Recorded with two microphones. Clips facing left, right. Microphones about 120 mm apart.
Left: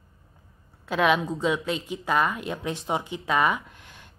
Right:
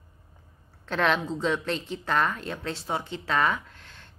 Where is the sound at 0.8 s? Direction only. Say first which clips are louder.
Left 3 dB; 10° left (ahead or behind).